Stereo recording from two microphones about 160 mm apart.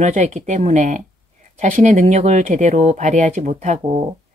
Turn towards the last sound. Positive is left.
turn(degrees=-50)  # may be behind; listen again after turning